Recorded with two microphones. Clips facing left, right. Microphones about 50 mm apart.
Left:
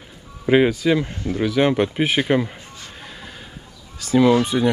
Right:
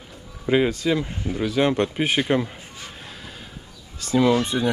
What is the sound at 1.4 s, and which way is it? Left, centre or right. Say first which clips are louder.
Speech: left 3 dB; centre.